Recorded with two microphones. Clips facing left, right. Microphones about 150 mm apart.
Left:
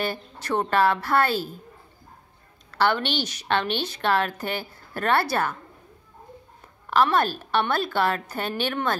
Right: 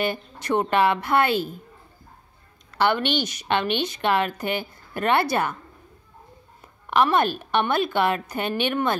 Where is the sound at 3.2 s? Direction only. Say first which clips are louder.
Right 1 dB; 10° right (ahead or behind).